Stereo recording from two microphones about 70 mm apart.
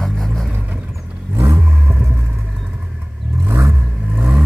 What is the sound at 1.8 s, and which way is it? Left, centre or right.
Vehicle, right.